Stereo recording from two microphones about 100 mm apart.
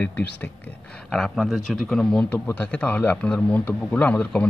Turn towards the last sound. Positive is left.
turn(degrees=15)  # may be behind; listen again after turning